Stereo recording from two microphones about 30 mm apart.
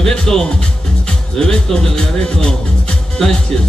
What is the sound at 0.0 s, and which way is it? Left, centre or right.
Speech, left.